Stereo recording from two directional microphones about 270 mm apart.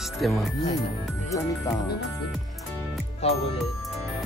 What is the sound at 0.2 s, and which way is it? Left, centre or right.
Speech, centre.